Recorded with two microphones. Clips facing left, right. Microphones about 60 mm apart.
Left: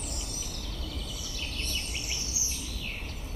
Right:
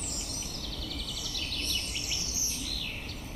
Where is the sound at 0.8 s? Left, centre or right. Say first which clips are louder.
Even; left.